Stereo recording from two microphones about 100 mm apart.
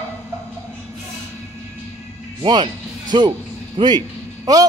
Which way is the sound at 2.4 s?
50° right (ahead or behind).